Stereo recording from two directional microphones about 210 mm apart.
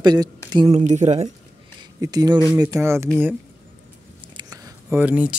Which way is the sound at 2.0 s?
15° right (ahead or behind).